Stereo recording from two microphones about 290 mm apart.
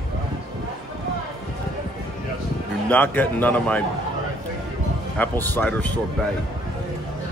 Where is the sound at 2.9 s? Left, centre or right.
Centre.